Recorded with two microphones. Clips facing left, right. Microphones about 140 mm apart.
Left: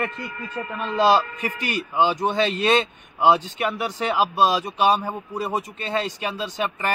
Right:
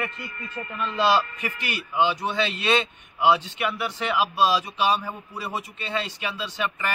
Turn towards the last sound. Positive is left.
turn(degrees=40)  # may be behind; listen again after turning